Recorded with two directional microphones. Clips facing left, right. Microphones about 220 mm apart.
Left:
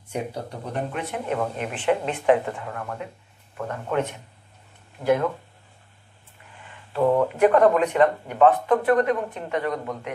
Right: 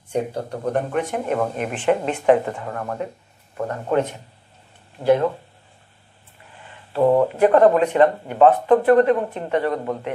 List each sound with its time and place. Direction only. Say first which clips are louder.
0.3 s speech: right 8 dB; 55° right (ahead or behind); by 5.3 s 30° right (ahead or behind)
6.5 s speech: right 3 dB; 35° right (ahead or behind)